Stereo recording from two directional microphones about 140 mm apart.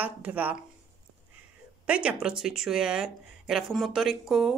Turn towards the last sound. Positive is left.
turn(degrees=0)  # may be behind; listen again after turning